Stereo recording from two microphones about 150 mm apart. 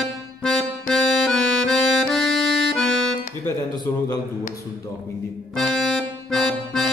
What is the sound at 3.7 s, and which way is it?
Speech, 25° left (ahead or behind).